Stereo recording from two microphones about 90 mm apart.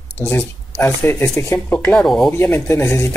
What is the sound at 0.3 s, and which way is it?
Speech, 20° left (ahead or behind).